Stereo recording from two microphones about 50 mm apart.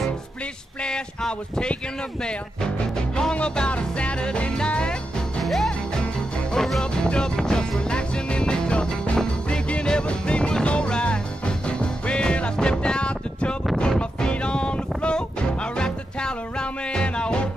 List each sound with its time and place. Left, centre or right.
0.8 s speech: centre
3.3 s music: centre
5.4 s music: centre
6.8 s speech: centre
7.9 s music: centre